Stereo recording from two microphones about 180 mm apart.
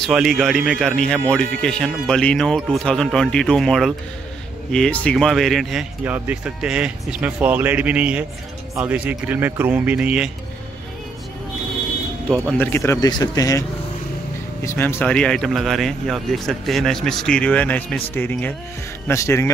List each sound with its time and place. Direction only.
0.0 s speech: centre (ahead or behind)
12.3 s speech: 5° left (ahead or behind)